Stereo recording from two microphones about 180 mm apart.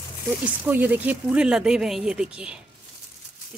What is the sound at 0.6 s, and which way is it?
Speech, 10° right (ahead or behind).